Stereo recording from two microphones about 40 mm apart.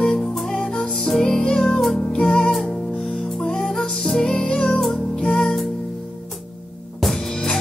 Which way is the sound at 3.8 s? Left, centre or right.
Centre.